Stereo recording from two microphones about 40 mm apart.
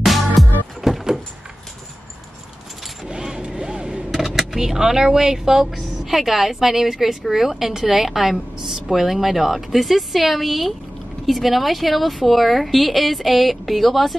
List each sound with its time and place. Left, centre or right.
0.0 s music: centre
0.7 s door: centre
3.1 s vehicle: centre
4.1 s a sound: centre
4.6 s a woman's voice: centre